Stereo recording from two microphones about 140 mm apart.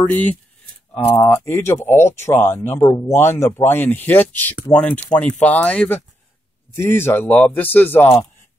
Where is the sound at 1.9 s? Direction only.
55° left (ahead or behind).